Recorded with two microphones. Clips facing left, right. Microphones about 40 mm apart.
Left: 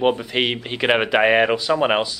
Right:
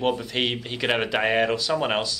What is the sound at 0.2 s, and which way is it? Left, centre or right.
Speech, centre.